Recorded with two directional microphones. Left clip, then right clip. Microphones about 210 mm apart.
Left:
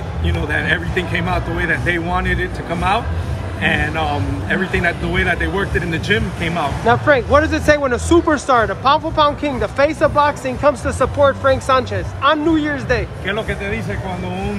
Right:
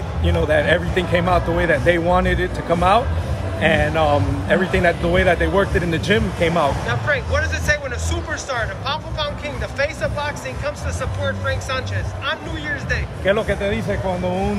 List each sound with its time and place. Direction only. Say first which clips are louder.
0.2 s speech: right 3 dB; 50° right (ahead or behind)
6.9 s speech: left 8 dB; 10° left (ahead or behind)
13.2 s speech: right 3 dB; 50° right (ahead or behind)